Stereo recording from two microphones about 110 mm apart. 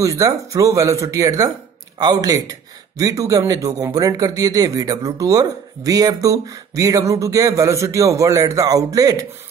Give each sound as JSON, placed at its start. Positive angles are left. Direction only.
{"t": 0.0, "sound": "speech", "side_deg": -30}